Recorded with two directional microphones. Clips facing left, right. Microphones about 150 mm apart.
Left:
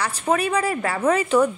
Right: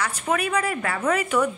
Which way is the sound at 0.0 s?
30° left (ahead or behind).